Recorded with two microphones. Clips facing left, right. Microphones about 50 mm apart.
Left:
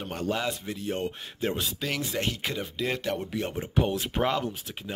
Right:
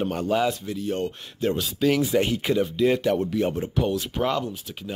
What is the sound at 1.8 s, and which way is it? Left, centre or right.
Speech, centre.